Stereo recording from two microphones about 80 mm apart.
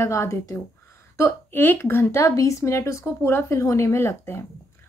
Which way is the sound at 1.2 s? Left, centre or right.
Left.